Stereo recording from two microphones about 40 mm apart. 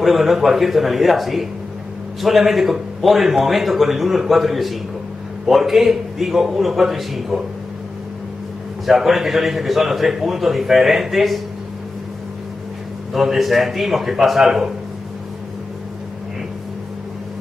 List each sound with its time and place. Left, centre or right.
0.0 s a man's voice: centre
8.8 s a man's voice: centre
13.1 s a man's voice: centre